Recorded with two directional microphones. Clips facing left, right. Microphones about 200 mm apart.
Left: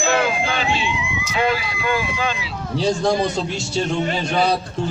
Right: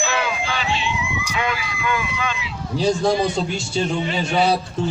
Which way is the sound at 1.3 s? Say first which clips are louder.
Left 7 dB; 35° left (ahead or behind).